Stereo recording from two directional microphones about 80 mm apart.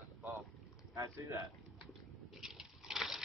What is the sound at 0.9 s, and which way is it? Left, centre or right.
Speech, right.